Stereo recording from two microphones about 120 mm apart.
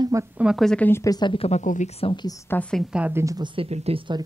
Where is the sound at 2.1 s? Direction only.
30° left (ahead or behind).